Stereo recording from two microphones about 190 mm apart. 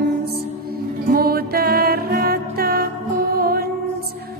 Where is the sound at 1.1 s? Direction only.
55° right (ahead or behind).